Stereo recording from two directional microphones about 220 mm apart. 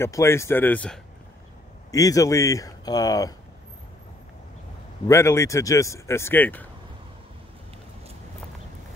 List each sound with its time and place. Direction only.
0.0 s speech: 10° left (ahead or behind)
1.9 s speech: 15° left (ahead or behind)
5.0 s speech: 10° left (ahead or behind)